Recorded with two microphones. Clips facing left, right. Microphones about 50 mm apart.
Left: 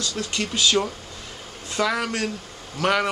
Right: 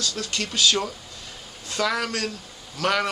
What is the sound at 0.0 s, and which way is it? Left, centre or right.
A man's voice, left.